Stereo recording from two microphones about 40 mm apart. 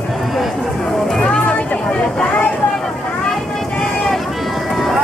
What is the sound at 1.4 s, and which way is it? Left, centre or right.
Vehicle, left.